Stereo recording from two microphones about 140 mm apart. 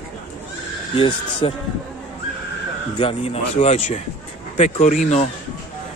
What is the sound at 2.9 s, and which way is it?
Speech, 45° left (ahead or behind).